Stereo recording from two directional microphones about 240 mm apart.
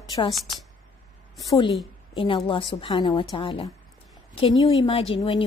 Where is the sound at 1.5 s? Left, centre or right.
Centre.